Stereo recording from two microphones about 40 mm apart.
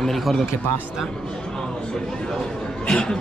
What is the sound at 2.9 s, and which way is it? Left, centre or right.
Speech, left.